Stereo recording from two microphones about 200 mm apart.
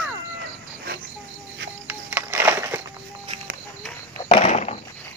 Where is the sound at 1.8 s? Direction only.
10° right (ahead or behind).